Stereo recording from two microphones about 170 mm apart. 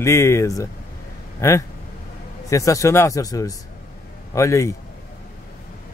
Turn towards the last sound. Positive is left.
turn(degrees=15)  # may be behind; listen again after turning